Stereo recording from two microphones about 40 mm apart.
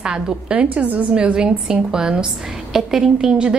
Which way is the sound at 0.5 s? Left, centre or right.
Right.